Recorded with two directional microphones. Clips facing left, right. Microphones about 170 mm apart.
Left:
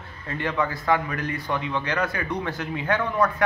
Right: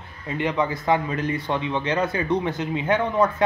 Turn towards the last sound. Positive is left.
turn(degrees=-20)  # may be behind; listen again after turning